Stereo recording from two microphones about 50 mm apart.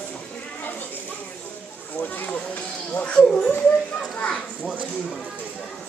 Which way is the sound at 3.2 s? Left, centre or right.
Centre.